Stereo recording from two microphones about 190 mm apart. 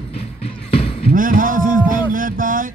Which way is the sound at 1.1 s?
45° right (ahead or behind).